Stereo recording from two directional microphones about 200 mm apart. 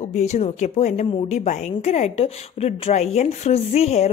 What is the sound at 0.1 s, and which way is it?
A woman's voice, 35° left (ahead or behind).